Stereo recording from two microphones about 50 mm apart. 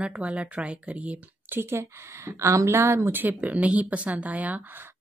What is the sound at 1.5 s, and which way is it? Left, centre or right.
A woman's voice, right.